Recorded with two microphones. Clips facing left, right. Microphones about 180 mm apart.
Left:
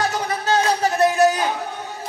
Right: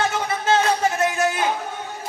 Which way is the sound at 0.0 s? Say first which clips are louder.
Even; 35° left (ahead or behind).